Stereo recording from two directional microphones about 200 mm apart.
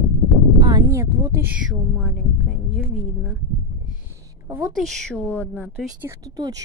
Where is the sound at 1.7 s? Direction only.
Centre (ahead or behind).